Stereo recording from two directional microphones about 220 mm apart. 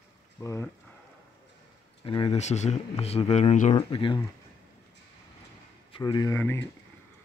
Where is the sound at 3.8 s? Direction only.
20° left (ahead or behind).